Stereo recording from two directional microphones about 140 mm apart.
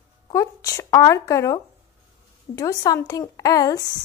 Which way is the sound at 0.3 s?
25° left (ahead or behind).